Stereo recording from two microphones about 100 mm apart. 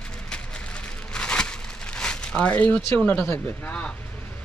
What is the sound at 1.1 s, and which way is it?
Crumpling, 10° left (ahead or behind).